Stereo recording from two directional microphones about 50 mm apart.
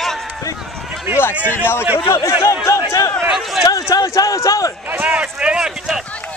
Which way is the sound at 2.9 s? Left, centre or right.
Left.